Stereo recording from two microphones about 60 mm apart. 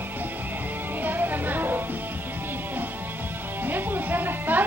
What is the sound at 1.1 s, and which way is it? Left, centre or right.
Music, right.